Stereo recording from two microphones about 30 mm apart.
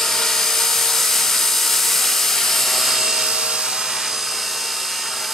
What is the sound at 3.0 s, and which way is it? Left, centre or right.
Helicopter, centre.